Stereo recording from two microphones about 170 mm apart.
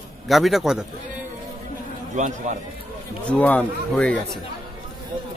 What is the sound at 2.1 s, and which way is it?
Speech, 45° right (ahead or behind).